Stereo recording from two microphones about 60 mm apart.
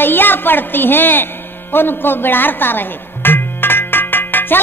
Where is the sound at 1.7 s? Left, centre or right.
Left.